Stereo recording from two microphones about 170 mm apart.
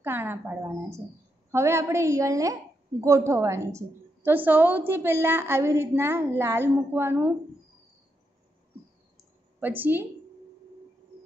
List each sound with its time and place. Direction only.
0.0 s a woman's voice: 15° right (ahead or behind)
9.6 s a woman's voice: 10° right (ahead or behind)